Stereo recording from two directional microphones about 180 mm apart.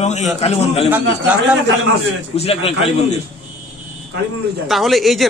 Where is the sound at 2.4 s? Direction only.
35° left (ahead or behind).